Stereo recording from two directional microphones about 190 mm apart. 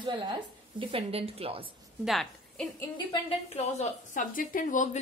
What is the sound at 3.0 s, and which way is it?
A woman's voice, 30° left (ahead or behind).